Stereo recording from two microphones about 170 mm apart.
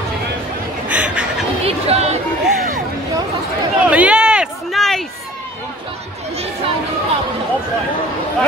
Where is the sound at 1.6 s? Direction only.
35° right (ahead or behind).